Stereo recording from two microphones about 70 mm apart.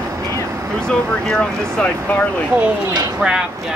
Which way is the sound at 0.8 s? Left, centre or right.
Centre.